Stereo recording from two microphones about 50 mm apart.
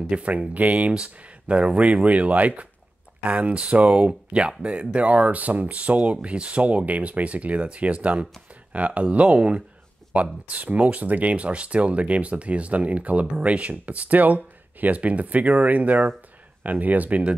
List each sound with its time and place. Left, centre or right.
0.1 s speech: right